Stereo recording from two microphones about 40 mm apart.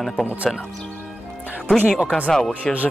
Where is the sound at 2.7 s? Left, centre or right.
Centre.